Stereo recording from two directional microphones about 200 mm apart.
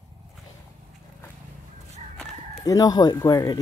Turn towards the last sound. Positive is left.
turn(degrees=15)  # may be behind; listen again after turning